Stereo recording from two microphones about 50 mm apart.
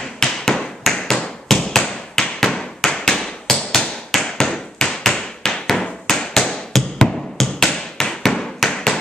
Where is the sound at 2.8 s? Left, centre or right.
Centre.